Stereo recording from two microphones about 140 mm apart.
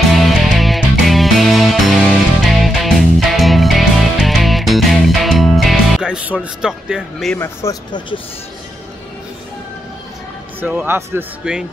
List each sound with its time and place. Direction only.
0.4 s music: centre (ahead or behind)
7.3 s speech: 20° left (ahead or behind)
10.6 s speech: 15° right (ahead or behind)